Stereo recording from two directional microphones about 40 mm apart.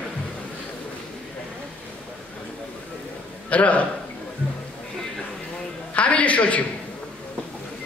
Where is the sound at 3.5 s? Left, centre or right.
Left.